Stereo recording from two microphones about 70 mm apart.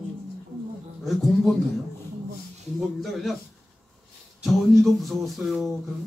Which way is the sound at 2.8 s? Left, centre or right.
Centre.